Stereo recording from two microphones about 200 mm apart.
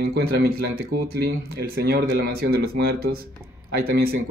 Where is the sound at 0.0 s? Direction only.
50° right (ahead or behind).